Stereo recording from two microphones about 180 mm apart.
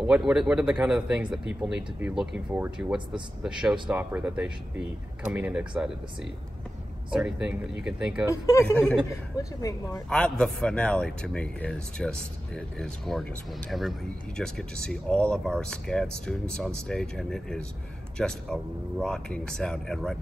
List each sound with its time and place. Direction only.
0.0 s speech: 5° right (ahead or behind)
7.1 s speech: 5° right (ahead or behind)
8.3 s speech: 15° left (ahead or behind)
10.0 s speech: 5° left (ahead or behind)